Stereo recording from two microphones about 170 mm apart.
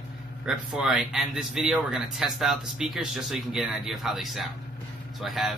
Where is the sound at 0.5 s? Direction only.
5° right (ahead or behind).